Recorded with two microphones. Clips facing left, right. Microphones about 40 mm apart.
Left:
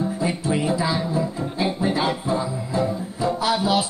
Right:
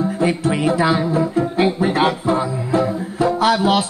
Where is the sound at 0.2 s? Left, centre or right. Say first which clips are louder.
Right 7 dB; right.